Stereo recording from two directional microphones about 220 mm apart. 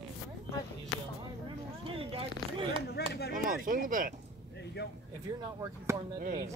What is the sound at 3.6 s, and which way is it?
Speech, 40° right (ahead or behind).